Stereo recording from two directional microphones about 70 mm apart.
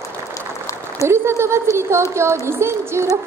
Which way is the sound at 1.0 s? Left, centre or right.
Right.